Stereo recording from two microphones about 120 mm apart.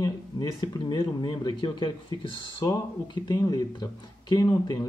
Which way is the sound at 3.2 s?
30° left (ahead or behind).